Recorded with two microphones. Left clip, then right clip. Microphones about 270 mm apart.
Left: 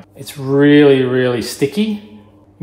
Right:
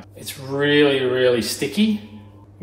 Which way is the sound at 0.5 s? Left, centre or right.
Left.